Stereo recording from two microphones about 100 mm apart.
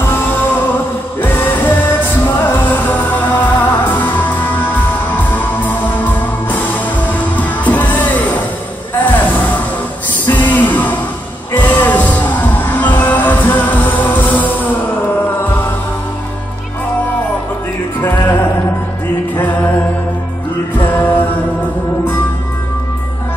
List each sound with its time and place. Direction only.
0.0 s music: 20° left (ahead or behind)
18.0 s music: 20° left (ahead or behind)
20.7 s music: 20° left (ahead or behind)